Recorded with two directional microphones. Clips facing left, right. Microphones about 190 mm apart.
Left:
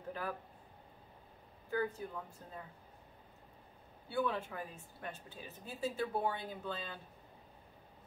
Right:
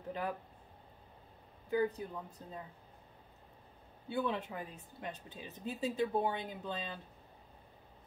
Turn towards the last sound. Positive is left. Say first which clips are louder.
# right 1 dB
turn(degrees=-20)  # may be behind; listen again after turning